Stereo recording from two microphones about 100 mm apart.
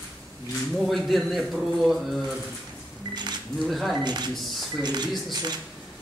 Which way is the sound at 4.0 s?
45° right (ahead or behind).